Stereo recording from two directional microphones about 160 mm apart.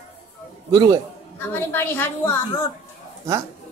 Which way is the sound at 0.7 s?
25° right (ahead or behind).